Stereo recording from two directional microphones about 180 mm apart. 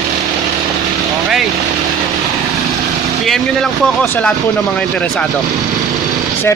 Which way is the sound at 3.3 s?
Centre (ahead or behind).